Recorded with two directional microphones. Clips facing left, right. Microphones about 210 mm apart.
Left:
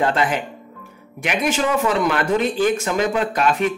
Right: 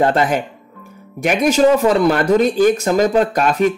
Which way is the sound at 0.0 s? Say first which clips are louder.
Right 4 dB; 40° right (ahead or behind).